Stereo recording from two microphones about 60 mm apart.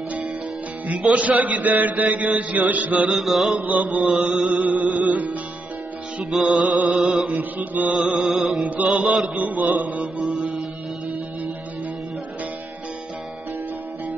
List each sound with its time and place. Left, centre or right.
0.8 s mantra: right
3.2 s music: centre
3.5 s mantra: right
4.1 s music: centre
4.6 s mantra: right
6.3 s music: centre
7.5 s mantra: right
7.9 s music: centre
9.3 s mantra: right